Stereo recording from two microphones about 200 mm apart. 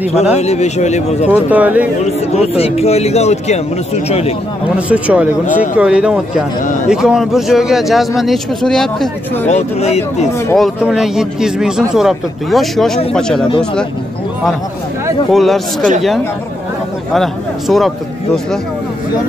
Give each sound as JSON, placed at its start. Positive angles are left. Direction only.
{"t": 0.0, "sound": "a man's voice", "side_deg": 30}
{"t": 1.3, "sound": "speech", "side_deg": -10}
{"t": 2.0, "sound": "a man's voice", "side_deg": 30}
{"t": 4.7, "sound": "speech", "side_deg": -5}
{"t": 9.5, "sound": "a man's voice", "side_deg": 35}
{"t": 10.5, "sound": "speech", "side_deg": 0}
{"t": 15.3, "sound": "speech", "side_deg": 0}
{"t": 17.1, "sound": "speech", "side_deg": 0}